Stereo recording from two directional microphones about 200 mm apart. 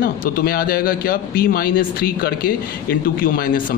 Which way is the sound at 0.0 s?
45° left (ahead or behind).